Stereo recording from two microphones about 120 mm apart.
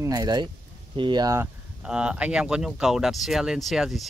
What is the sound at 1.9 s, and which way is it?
Speech, 5° right (ahead or behind).